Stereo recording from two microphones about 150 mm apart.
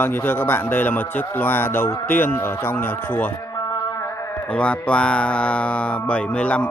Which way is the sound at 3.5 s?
25° left (ahead or behind).